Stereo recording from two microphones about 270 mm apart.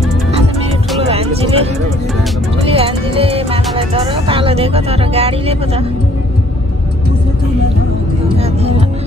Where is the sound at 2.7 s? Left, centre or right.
Right.